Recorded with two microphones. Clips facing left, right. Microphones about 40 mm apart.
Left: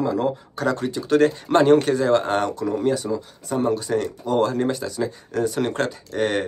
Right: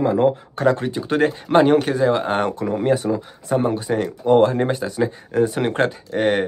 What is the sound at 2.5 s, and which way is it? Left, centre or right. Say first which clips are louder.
Speech: right 2 dB; right.